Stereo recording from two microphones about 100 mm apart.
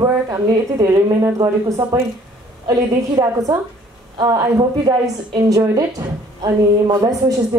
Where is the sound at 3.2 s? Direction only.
40° right (ahead or behind).